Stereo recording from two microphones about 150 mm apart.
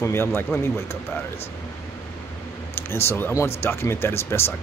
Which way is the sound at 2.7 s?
15° left (ahead or behind).